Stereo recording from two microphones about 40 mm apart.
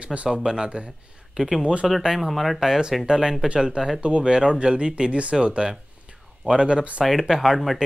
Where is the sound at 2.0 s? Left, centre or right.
Centre.